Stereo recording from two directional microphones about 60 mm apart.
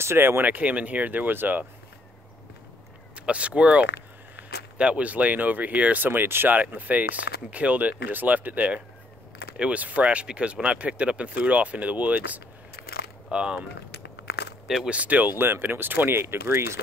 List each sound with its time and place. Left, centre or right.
0.0 s speech: right
3.2 s speech: right
13.3 s a sound: centre
14.9 s speech: right